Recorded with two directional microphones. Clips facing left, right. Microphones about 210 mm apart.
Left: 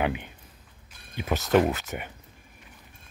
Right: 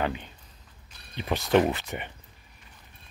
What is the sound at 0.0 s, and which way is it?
Speech, 15° left (ahead or behind).